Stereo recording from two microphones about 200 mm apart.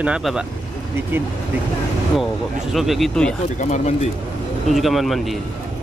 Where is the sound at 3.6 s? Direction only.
35° left (ahead or behind).